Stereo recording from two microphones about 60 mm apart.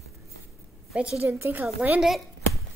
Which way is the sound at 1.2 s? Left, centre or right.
Right.